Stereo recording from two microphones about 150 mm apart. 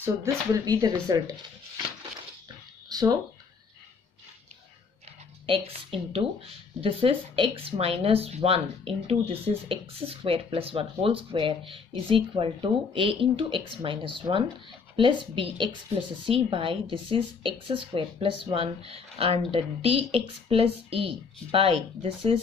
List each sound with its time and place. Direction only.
0.0 s speech: 20° right (ahead or behind)
2.9 s a sound: 25° right (ahead or behind)
5.5 s speech: 40° right (ahead or behind)